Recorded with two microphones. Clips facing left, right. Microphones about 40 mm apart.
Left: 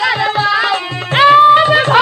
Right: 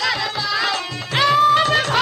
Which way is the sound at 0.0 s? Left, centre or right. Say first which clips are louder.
Left 8 dB; left.